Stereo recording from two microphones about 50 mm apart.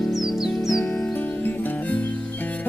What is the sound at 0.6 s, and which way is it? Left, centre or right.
Music, left.